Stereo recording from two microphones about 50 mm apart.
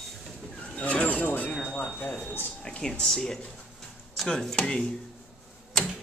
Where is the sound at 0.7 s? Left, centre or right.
Left.